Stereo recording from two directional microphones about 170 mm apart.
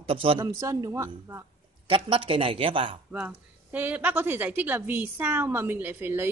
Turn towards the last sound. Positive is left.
turn(degrees=-10)  # may be behind; listen again after turning